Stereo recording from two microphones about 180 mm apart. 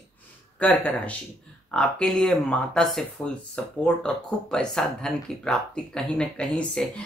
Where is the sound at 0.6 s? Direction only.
5° left (ahead or behind).